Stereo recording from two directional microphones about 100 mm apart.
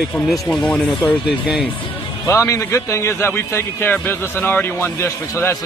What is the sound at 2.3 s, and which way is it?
A man's voice, 30° left (ahead or behind).